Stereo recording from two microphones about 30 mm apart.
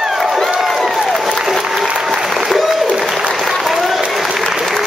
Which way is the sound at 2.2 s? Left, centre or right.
Centre.